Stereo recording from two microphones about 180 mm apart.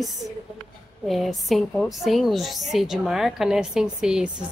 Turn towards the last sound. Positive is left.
turn(degrees=-5)  # may be behind; listen again after turning